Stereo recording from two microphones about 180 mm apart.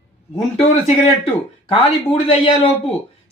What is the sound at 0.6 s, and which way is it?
Speech, 35° left (ahead or behind).